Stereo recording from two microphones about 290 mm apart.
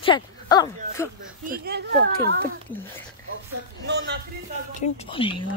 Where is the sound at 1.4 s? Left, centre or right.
Right.